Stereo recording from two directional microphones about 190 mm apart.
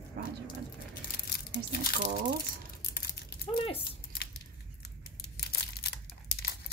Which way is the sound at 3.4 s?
30° left (ahead or behind).